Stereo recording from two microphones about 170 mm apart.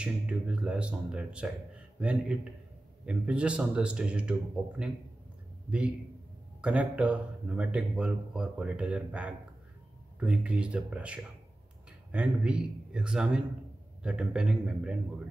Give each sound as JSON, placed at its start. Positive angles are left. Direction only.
{"t": 0.0, "sound": "speech", "side_deg": -5}
{"t": 6.6, "sound": "a man's voice", "side_deg": -5}